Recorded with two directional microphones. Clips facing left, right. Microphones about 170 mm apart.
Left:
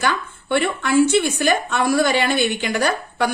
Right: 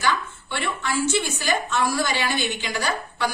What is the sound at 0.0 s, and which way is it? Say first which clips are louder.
A woman's voice: left 2 dB; 60° left (ahead or behind).